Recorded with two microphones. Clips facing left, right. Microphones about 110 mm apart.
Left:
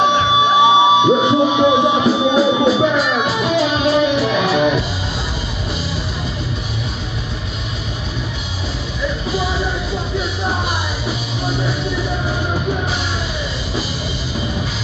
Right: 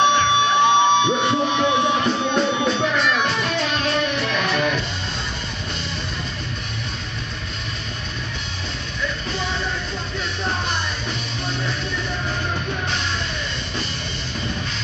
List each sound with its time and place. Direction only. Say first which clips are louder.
0.0 s music: left 3 dB; 10° left (ahead or behind)
9.0 s music: left 6 dB; 5° left (ahead or behind)